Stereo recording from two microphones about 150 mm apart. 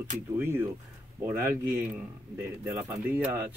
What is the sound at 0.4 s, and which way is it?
Speech, 15° right (ahead or behind).